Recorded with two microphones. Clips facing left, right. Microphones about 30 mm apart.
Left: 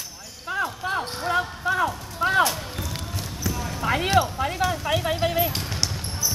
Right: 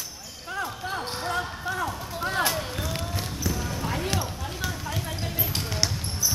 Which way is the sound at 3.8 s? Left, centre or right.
Left.